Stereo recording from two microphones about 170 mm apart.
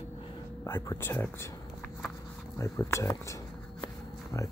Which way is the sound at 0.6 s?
15° left (ahead or behind).